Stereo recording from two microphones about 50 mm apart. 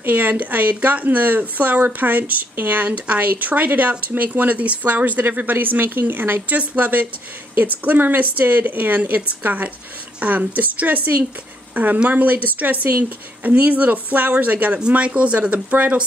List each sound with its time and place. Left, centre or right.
0.0 s speech: right
6.5 s speech: right